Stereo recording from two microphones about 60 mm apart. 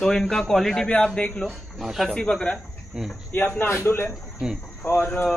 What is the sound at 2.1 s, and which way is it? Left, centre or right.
Speech, centre.